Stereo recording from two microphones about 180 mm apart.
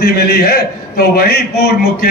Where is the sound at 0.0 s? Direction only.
65° left (ahead or behind).